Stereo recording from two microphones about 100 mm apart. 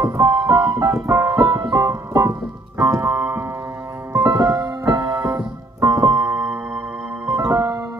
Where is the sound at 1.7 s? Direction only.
30° right (ahead or behind).